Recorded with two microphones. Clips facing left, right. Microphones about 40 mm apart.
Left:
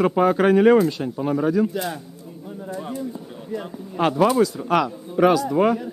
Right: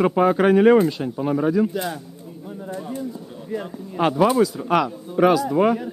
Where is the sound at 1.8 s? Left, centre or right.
Centre.